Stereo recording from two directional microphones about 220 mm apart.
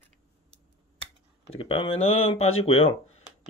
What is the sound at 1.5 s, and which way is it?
Speech, 25° left (ahead or behind).